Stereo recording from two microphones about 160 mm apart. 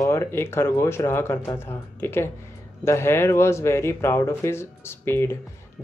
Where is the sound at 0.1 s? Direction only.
15° left (ahead or behind).